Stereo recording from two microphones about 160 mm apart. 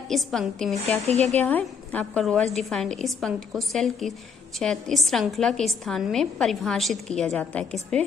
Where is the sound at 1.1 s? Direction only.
40° right (ahead or behind).